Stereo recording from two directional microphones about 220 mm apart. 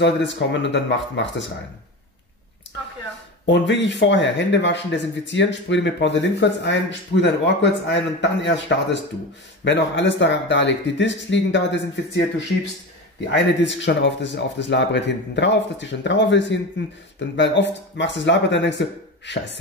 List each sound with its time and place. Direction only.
0.0 s a man's voice: 55° left (ahead or behind)
3.5 s a man's voice: 55° left (ahead or behind)